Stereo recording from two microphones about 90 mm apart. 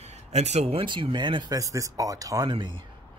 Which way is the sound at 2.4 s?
60° right (ahead or behind).